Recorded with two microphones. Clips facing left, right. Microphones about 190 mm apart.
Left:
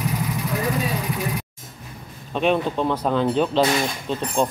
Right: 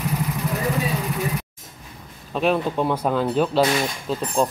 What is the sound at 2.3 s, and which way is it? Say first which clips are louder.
Speech: even; 5° right (ahead or behind).